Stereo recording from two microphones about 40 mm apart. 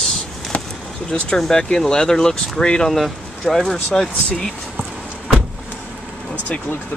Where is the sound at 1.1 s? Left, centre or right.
Centre.